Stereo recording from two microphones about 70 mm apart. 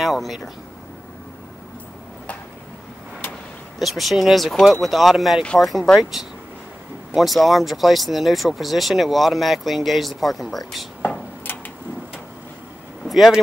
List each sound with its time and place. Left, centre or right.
0.0 s speech: centre
3.8 s speech: centre
7.2 s speech: centre
11.0 s a sound: left
13.1 s speech: centre